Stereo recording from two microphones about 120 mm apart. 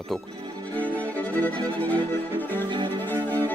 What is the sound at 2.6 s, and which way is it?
Violin, 40° right (ahead or behind).